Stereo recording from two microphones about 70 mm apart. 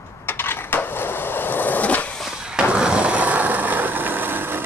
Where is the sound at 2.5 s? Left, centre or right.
Centre; by 4.6 s right.